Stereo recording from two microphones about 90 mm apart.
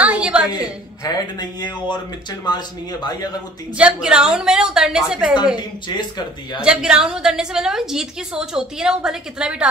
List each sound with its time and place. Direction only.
0.0 s a sound: 15° right (ahead or behind)
1.0 s speech: 50° left (ahead or behind)
3.7 s a woman's voice: 10° right (ahead or behind)
5.6 s speech: 55° left (ahead or behind)
6.6 s a woman's voice: 10° right (ahead or behind)